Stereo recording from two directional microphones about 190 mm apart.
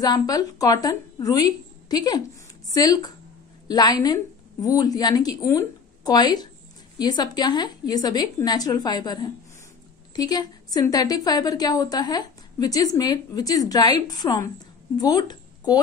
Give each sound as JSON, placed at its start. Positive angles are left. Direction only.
{"t": 0.0, "sound": "a woman's voice", "side_deg": 20}